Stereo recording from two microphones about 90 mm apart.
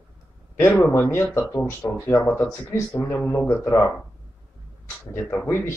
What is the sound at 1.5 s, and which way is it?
Speech, 35° left (ahead or behind).